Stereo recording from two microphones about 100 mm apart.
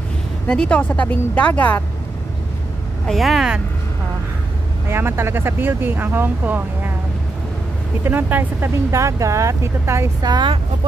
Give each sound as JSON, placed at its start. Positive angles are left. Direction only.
{"t": 0.5, "sound": "speech", "side_deg": 10}
{"t": 3.1, "sound": "speech", "side_deg": 0}
{"t": 4.8, "sound": "speech", "side_deg": -25}
{"t": 8.0, "sound": "speech", "side_deg": -20}
{"t": 8.9, "sound": "speech", "side_deg": -30}
{"t": 10.2, "sound": "speech", "side_deg": -45}